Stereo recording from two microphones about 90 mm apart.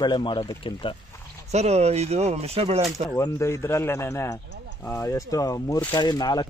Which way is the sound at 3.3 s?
30° left (ahead or behind).